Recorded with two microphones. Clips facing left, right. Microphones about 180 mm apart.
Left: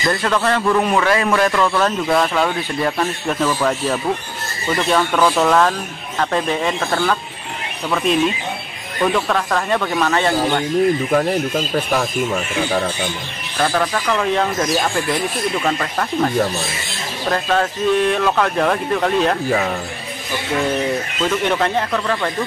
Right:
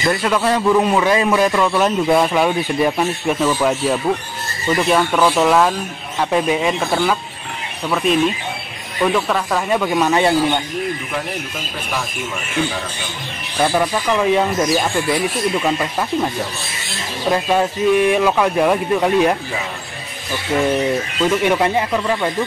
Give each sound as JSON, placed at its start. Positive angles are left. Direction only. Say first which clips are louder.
{"t": 0.1, "sound": "a man's voice", "louder": "right 1 dB", "side_deg": -10}
{"t": 9.0, "sound": "a man's voice", "louder": "right 1 dB", "side_deg": 0}
{"t": 13.6, "sound": "a man's voice", "louder": "right 2 dB", "side_deg": -10}
{"t": 17.3, "sound": "a man's voice", "louder": "right 2 dB", "side_deg": -10}
{"t": 21.3, "sound": "a man's voice", "louder": "right 2 dB", "side_deg": -10}